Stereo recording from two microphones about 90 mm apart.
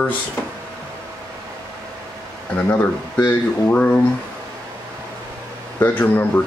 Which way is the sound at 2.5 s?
15° left (ahead or behind).